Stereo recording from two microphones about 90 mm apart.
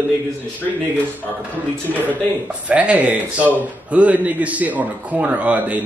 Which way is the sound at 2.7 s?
15° right (ahead or behind).